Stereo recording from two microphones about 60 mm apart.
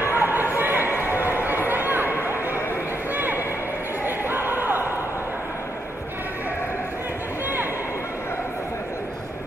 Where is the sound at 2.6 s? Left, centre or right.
Left.